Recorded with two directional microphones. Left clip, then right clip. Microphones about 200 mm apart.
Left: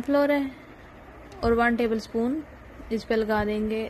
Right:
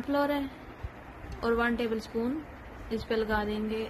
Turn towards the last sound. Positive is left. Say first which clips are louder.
# left 5 dB
turn(degrees=30)  # may be behind; listen again after turning